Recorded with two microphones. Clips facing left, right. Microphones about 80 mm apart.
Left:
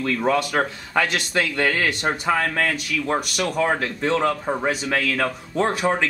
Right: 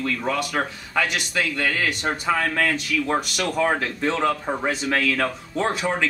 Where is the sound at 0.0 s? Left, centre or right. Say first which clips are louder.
Left 4 dB; left.